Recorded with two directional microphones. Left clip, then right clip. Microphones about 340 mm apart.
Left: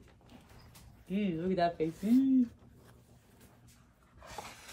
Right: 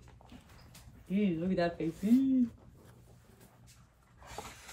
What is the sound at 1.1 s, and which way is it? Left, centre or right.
A woman's voice, centre.